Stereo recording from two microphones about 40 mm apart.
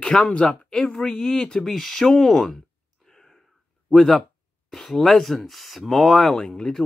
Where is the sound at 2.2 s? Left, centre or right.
Centre.